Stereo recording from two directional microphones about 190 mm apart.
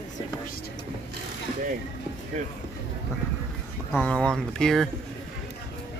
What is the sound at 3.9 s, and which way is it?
Speech, 5° left (ahead or behind).